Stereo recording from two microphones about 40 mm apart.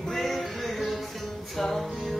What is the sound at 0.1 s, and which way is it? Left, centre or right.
Music, centre.